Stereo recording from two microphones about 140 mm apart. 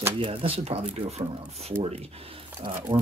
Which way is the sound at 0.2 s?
40° right (ahead or behind).